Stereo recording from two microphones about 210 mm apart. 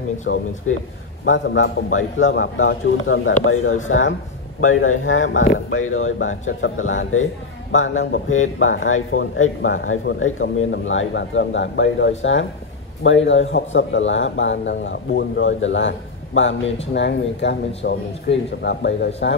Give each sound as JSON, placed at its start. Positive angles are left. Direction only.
{"t": 0.3, "sound": "a man's voice", "side_deg": 60}
{"t": 3.4, "sound": "speech", "side_deg": 80}
{"t": 3.8, "sound": "a man's voice", "side_deg": 70}